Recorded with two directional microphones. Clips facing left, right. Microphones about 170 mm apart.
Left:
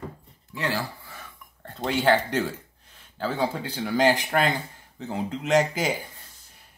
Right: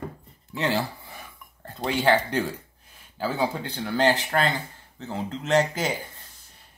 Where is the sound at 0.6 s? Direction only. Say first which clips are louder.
Right 3 dB; 25° right (ahead or behind).